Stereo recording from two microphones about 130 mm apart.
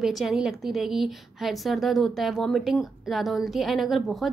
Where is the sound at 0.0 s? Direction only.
Centre (ahead or behind).